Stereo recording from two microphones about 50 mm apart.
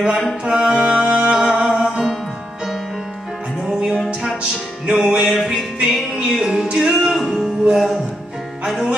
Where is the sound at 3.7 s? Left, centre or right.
Centre.